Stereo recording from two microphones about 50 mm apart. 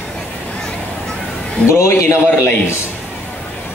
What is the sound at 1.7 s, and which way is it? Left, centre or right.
Speech, left.